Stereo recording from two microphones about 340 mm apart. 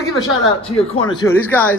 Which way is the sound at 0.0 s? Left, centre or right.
Centre.